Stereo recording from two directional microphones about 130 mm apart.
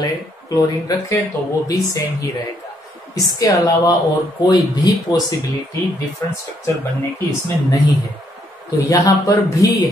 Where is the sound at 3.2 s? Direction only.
30° left (ahead or behind).